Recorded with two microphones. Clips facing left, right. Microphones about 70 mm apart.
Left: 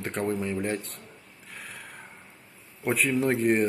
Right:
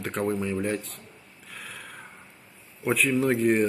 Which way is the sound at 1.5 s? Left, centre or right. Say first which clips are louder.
Right 1 dB; centre.